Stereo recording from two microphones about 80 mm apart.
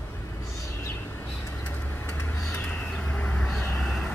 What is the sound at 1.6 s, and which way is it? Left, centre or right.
Vehicle, left.